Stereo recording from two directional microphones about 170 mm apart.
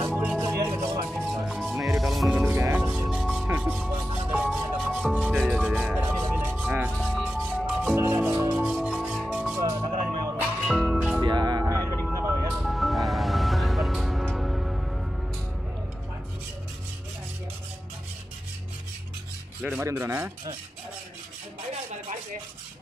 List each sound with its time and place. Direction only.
0.1 s music: 5° right (ahead or behind)
0.4 s music: 15° right (ahead or behind)
1.1 s music: centre (ahead or behind)
9.6 s music: 20° right (ahead or behind)
10.4 s music: centre (ahead or behind)
11.1 s music: 25° right (ahead or behind)
11.8 s music: 10° left (ahead or behind)
12.1 s music: 15° right (ahead or behind)
12.5 s music: centre (ahead or behind)
19.8 s speech: 15° right (ahead or behind)